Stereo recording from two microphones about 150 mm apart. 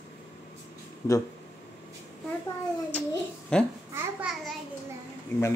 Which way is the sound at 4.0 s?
10° right (ahead or behind).